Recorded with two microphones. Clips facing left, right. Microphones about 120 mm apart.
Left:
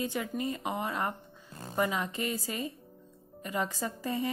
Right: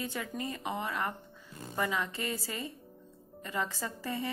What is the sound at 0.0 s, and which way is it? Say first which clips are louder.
A woman's voice: left 4 dB; 20° left (ahead or behind).